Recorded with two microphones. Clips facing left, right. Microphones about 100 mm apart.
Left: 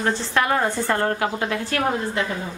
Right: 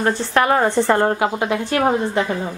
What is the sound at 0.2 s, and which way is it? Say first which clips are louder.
Speech: right 5 dB; 50° right (ahead or behind).